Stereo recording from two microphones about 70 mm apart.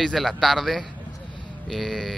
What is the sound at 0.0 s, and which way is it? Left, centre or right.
Speech, centre.